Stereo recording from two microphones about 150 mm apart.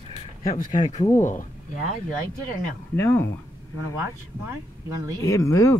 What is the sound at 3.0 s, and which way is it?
Speech, 15° left (ahead or behind).